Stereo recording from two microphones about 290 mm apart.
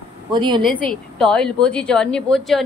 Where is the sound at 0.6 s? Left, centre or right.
Centre.